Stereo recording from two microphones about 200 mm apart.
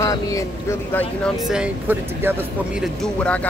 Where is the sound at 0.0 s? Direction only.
15° left (ahead or behind).